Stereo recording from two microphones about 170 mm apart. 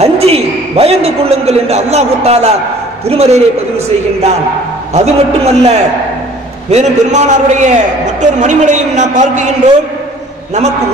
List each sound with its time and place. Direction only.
0.0 s a man's voice: 35° right (ahead or behind)